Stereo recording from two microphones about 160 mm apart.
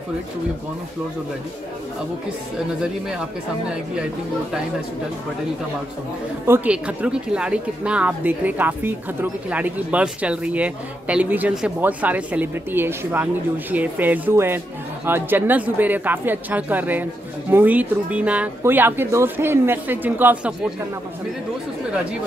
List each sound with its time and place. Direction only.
6.4 s speech: 10° right (ahead or behind)